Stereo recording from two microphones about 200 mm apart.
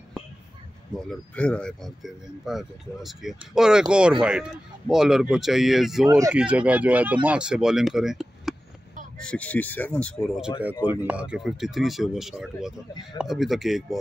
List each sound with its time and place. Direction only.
0.9 s speech: 5° left (ahead or behind)
6.0 s speech: 20° right (ahead or behind)
6.3 s speech: 5° right (ahead or behind)